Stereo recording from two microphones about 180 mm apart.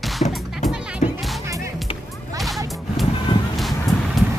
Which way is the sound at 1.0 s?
40° left (ahead or behind).